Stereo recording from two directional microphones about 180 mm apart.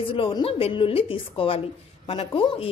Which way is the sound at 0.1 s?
30° left (ahead or behind).